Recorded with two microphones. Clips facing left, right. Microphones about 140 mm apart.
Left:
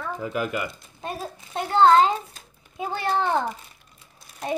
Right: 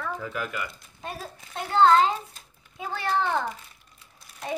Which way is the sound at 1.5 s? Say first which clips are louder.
Left 3 dB; 30° left (ahead or behind).